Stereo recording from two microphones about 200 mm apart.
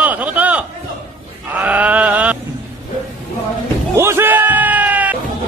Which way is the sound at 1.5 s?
5° right (ahead or behind).